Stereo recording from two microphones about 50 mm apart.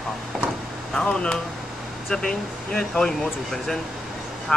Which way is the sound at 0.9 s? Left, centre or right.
Centre.